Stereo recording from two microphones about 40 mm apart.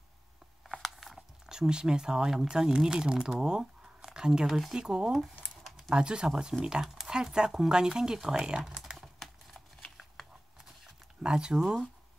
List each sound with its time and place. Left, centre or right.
0.8 s a sound: centre
1.5 s speech: centre
4.0 s a sound: centre
4.5 s speech: centre
4.7 s speech: centre
11.2 s speech: centre